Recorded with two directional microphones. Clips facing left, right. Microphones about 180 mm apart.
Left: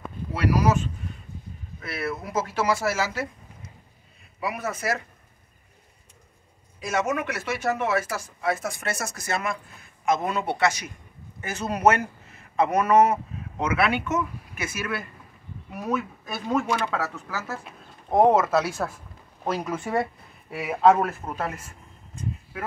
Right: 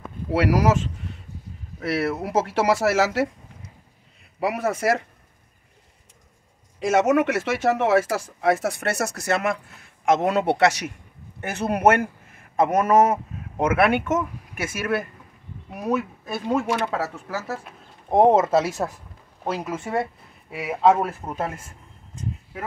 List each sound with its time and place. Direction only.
0.3 s speech: 90° right
1.8 s speech: 75° right (ahead or behind)
4.4 s speech: 70° right (ahead or behind)
6.8 s speech: 90° right
8.4 s speech: 70° right (ahead or behind)
11.4 s speech: 60° right (ahead or behind)
16.7 s speech: 20° right (ahead or behind)
18.1 s speech: 25° right (ahead or behind)
19.4 s a man's voice: 5° right (ahead or behind)
21.3 s speech: 20° right (ahead or behind)